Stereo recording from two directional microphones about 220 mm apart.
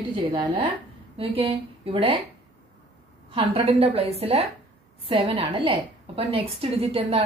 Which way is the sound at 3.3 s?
25° right (ahead or behind).